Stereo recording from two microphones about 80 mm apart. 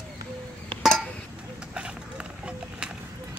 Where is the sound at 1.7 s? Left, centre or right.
Centre.